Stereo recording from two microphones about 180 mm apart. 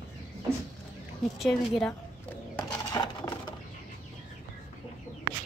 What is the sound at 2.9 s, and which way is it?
Sewing machine, 25° left (ahead or behind).